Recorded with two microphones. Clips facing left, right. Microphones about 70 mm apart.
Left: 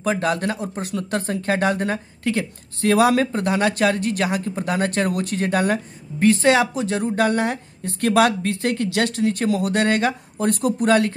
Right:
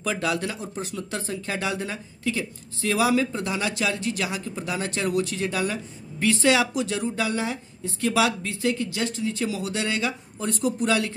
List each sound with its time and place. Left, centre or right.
0.0 s speech: left